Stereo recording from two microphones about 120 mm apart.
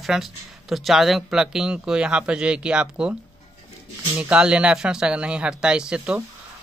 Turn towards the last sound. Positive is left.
turn(degrees=-5)  # may be behind; listen again after turning